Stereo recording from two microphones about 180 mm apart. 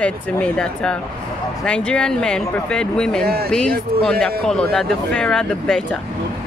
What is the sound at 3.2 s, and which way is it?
Speech, 60° right (ahead or behind).